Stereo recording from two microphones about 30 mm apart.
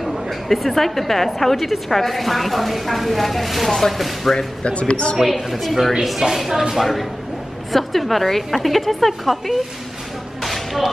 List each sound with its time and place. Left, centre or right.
0.0 s a woman's voice: centre
4.6 s a woman's voice: left
5.1 s a woman's voice: centre
10.4 s whip: centre